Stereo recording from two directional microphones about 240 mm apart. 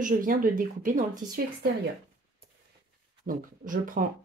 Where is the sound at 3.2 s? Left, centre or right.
Right.